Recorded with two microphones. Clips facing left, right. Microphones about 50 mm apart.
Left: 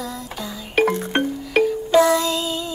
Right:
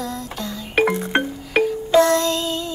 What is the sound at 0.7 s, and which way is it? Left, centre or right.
Music, right.